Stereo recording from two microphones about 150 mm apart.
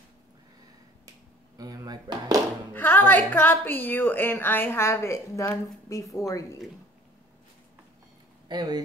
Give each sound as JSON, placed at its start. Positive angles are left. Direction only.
{"t": 1.6, "sound": "a sound", "side_deg": -25}
{"t": 2.7, "sound": "a woman's voice", "side_deg": 15}
{"t": 8.5, "sound": "speech", "side_deg": -25}